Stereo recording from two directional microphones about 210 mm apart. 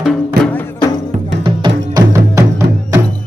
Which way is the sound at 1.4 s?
25° right (ahead or behind).